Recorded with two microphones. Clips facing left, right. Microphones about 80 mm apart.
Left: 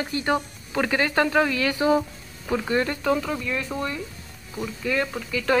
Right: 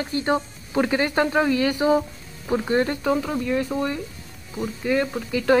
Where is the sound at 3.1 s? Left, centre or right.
Centre.